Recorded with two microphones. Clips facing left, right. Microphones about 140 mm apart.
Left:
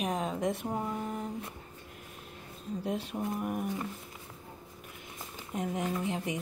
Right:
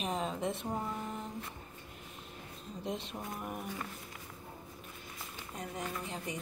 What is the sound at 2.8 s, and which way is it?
A woman's voice, 5° left (ahead or behind).